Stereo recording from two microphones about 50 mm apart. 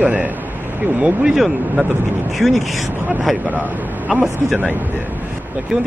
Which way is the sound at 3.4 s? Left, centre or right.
Right.